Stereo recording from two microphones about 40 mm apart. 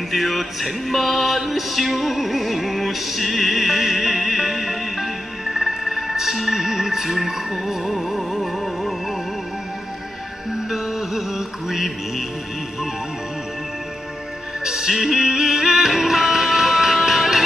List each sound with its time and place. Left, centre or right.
0.1 s music: centre
10.7 s music: centre
14.6 s music: centre